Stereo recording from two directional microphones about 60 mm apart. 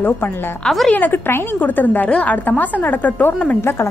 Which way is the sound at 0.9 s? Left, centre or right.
Left.